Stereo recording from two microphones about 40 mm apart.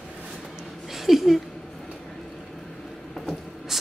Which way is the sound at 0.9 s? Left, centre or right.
Centre.